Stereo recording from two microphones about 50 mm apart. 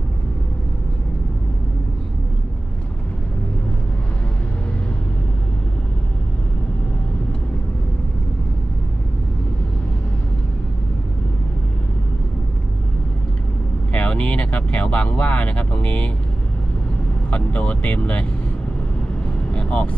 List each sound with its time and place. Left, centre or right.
13.9 s speech: left
17.3 s speech: left
19.5 s speech: left